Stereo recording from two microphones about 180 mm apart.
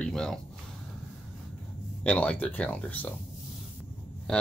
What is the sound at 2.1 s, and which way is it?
Speech, 5° left (ahead or behind).